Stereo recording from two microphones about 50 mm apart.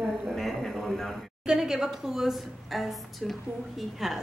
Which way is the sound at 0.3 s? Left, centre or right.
Centre.